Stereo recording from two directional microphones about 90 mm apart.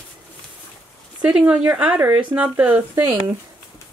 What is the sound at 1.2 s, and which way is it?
Speech, 10° right (ahead or behind).